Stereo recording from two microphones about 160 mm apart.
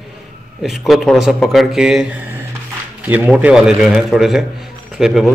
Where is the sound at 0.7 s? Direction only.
Centre (ahead or behind).